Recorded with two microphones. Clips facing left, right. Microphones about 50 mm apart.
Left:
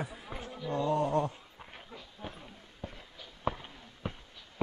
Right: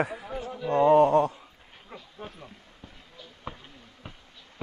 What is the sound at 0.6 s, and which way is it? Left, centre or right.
Speech, right.